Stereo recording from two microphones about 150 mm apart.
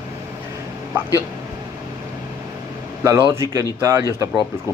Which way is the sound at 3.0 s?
20° right (ahead or behind).